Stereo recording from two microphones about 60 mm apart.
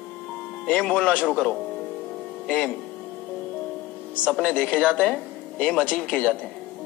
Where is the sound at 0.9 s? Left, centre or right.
Left.